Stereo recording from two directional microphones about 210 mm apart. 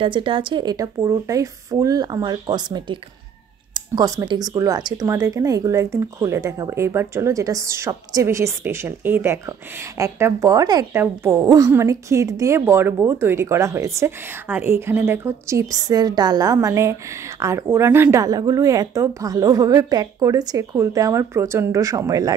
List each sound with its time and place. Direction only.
0.0 s speech: 25° right (ahead or behind)